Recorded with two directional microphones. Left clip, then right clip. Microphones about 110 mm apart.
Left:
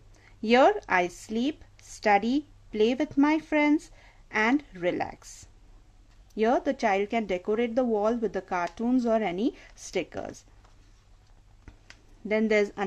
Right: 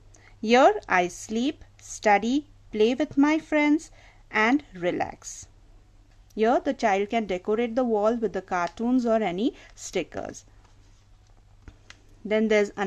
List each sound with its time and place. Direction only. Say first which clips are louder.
0.1 s speech: right 2 dB; 20° right (ahead or behind)
12.3 s speech: right 2 dB; 20° right (ahead or behind)